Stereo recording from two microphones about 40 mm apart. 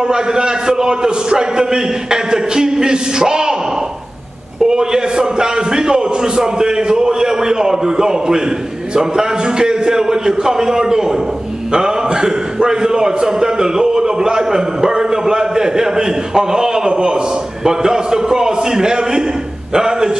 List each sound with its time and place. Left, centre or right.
0.0 s a man's voice: centre
4.6 s a man's voice: centre